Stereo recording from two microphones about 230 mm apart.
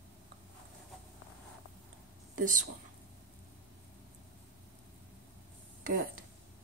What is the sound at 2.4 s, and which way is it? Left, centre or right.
Speech, right.